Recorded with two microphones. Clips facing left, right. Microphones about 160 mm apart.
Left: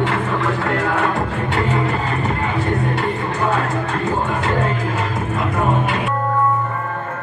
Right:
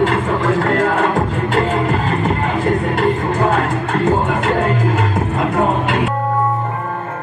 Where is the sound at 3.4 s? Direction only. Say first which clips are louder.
Right 3 dB; 45° right (ahead or behind).